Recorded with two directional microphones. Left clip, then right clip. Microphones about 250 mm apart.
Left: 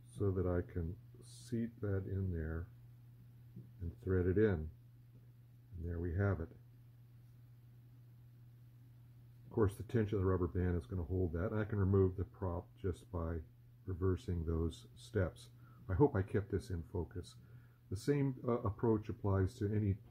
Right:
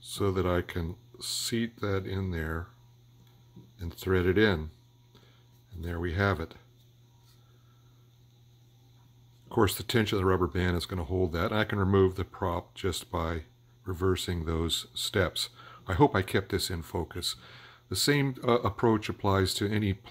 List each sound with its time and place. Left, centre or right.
0.2 s speech: right
4.0 s speech: right
5.9 s speech: right
9.6 s speech: right